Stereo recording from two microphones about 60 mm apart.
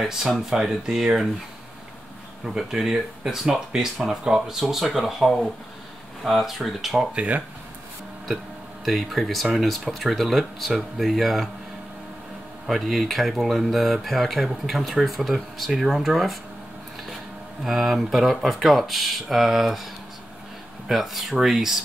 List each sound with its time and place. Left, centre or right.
0.0 s speech: centre
2.4 s speech: centre
7.2 s speech: right
8.8 s speech: centre
12.6 s speech: centre
17.6 s speech: centre
20.9 s speech: centre